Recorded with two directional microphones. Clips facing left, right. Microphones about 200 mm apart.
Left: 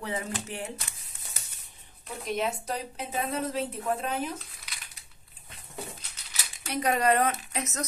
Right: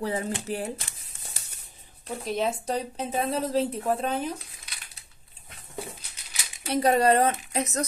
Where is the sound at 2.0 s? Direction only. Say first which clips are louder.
Right 3 dB; 30° right (ahead or behind).